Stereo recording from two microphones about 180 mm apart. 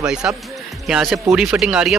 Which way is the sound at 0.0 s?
5° right (ahead or behind).